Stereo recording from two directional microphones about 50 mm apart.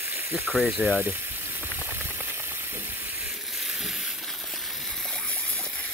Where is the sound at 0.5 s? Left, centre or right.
Centre.